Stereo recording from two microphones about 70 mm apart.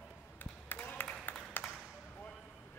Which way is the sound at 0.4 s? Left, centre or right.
Left.